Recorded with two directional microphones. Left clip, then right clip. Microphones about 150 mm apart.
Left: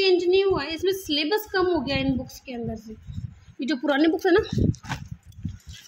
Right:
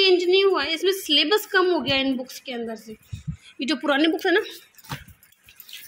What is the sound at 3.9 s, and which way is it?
Speech, 20° left (ahead or behind).